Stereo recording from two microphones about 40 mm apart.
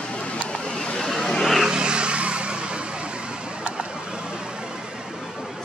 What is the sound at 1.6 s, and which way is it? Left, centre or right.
Vehicle, right.